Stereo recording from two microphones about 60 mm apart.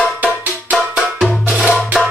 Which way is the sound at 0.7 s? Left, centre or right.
Centre.